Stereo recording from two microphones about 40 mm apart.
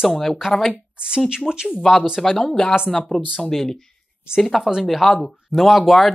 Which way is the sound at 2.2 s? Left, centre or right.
Centre.